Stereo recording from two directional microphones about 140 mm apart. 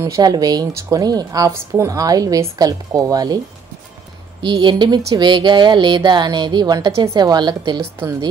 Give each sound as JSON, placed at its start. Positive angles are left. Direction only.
{"t": 0.0, "sound": "speech", "side_deg": -25}
{"t": 4.4, "sound": "speech", "side_deg": -35}